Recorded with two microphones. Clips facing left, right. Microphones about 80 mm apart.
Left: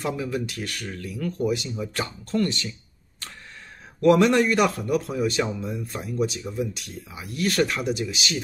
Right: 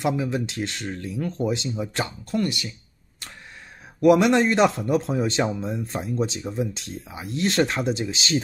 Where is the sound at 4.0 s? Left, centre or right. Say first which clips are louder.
Right 1 dB; centre.